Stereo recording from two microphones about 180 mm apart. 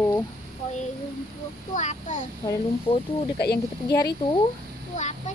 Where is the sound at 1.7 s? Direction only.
40° left (ahead or behind).